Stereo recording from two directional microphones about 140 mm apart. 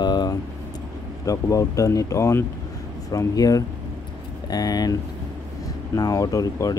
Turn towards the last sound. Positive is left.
turn(degrees=25)  # may be behind; listen again after turning